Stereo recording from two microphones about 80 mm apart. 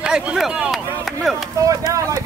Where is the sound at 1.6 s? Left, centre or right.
Right.